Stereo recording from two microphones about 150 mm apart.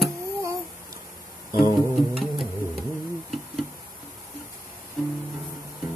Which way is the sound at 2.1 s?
Centre (ahead or behind).